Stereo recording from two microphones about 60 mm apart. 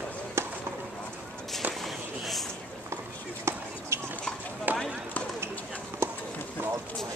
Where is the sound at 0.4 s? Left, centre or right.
Right.